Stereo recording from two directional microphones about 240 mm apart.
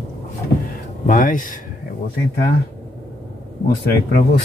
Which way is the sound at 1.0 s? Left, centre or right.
Left.